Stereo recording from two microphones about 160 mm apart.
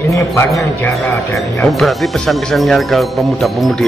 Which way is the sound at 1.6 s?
Centre (ahead or behind).